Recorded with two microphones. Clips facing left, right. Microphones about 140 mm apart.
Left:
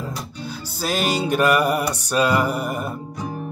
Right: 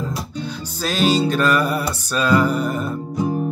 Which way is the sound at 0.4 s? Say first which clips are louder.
Right 1 dB; 10° left (ahead or behind).